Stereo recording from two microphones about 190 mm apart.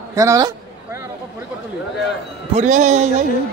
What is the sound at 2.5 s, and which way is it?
Speech, 40° right (ahead or behind).